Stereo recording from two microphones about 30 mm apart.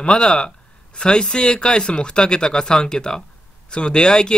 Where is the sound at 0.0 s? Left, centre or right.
Left.